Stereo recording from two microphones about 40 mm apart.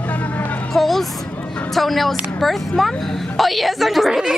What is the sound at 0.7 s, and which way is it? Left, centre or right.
A woman's voice, centre.